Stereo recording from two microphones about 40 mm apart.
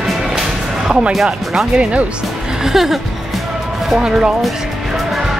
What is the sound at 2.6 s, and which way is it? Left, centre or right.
Speech, centre.